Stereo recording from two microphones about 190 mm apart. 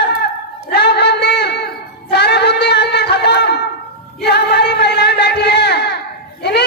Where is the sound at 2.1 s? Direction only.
60° left (ahead or behind).